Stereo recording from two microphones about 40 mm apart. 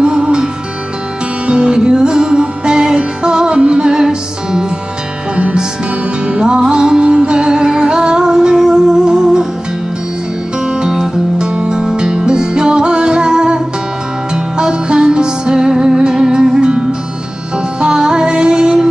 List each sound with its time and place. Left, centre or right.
0.0 s music: right
1.5 s music: right
10.7 s music: centre